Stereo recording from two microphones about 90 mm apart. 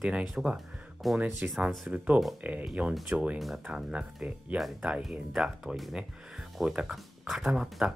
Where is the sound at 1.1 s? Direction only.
20° right (ahead or behind).